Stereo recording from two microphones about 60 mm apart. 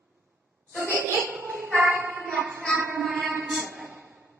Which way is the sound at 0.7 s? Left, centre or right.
Right.